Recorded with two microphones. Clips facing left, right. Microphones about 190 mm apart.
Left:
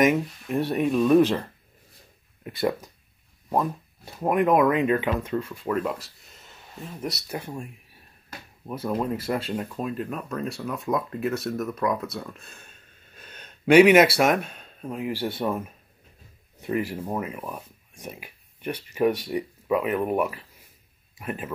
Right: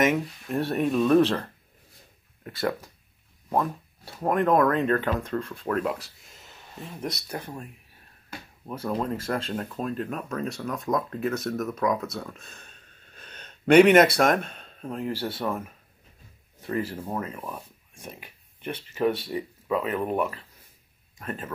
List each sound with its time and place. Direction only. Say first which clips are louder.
0.1 s speech: left 2 dB; centre (ahead or behind)
2.4 s speech: left 3 dB; 20° left (ahead or behind)
4.1 s speech: left 1 dB; 10° left (ahead or behind)
8.6 s speech: left 2 dB; 10° left (ahead or behind)
16.6 s speech: left 2 dB; 15° left (ahead or behind)